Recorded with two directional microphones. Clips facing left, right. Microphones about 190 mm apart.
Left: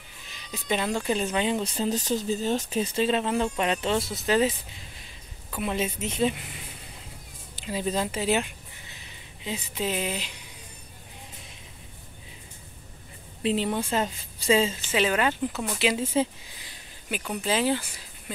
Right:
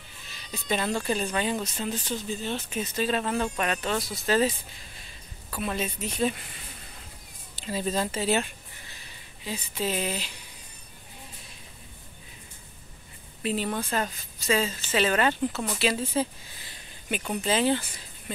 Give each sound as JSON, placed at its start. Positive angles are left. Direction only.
{"t": 0.3, "sound": "speech", "side_deg": 15}
{"t": 1.8, "sound": "speech", "side_deg": 40}
{"t": 5.5, "sound": "speech", "side_deg": 20}
{"t": 13.4, "sound": "speech", "side_deg": 25}
{"t": 14.9, "sound": "speech", "side_deg": 10}
{"t": 17.4, "sound": "speech", "side_deg": 10}